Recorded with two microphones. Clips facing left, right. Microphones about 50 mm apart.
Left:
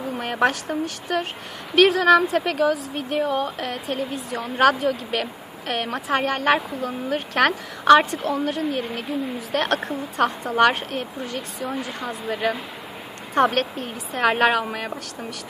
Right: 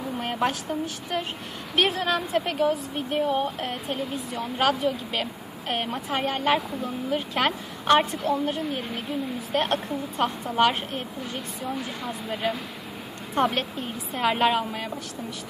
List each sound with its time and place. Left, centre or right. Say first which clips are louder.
0.2 s speech: left 5 dB; left
1.8 s a woman's voice: left 9 dB; left
13.3 s a woman's voice: left 5 dB; left